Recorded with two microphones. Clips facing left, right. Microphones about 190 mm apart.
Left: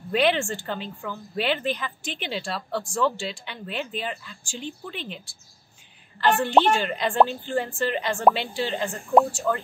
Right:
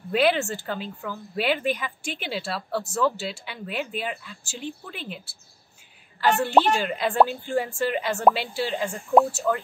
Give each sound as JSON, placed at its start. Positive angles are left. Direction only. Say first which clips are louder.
{"t": 0.1, "sound": "a woman's voice", "louder": "even", "side_deg": -5}
{"t": 6.4, "sound": "a woman's voice", "louder": "even", "side_deg": -5}